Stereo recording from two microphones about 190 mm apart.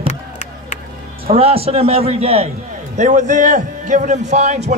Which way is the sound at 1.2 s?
30° right (ahead or behind).